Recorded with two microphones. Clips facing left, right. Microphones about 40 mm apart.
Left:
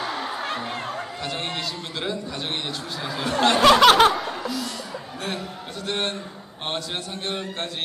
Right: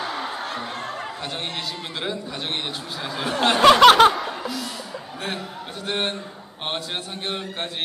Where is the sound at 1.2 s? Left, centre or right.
Centre.